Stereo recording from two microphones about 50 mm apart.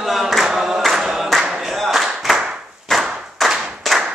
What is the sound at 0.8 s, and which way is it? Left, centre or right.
Choir, centre.